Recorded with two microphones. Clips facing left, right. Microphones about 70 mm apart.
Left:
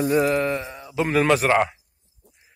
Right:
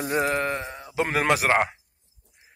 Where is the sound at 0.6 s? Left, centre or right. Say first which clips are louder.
Left 1 dB; right.